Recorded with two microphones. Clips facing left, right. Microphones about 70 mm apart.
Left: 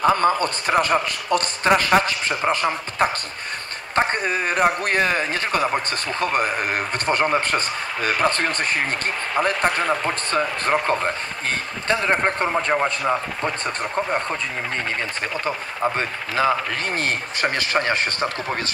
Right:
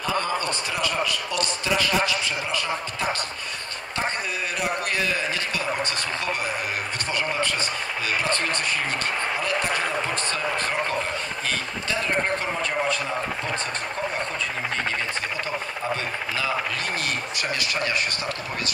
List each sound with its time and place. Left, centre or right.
0.0 s a man's voice: left
15.4 s speech: left